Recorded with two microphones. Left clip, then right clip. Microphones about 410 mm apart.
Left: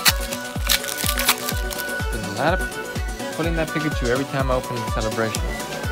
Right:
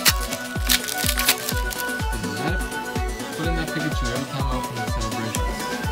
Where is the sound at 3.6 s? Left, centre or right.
Centre.